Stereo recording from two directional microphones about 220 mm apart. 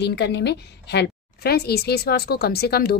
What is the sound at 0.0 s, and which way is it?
Speech, 50° left (ahead or behind).